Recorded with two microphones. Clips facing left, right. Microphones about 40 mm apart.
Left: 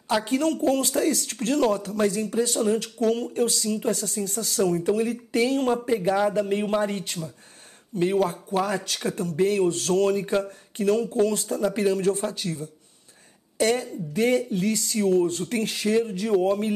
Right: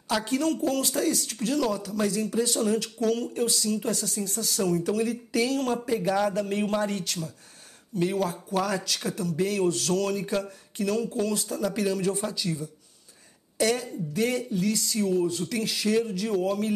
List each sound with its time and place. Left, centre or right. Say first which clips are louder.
0.2 s speech: left 3 dB; left
4.6 s speech: left 2 dB; left
5.9 s speech: left 3 dB; centre